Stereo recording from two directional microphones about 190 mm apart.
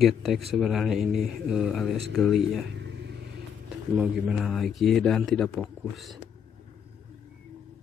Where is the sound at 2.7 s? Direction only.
65° right (ahead or behind).